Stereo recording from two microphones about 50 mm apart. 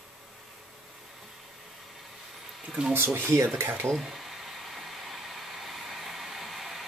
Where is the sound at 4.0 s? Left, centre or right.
Centre.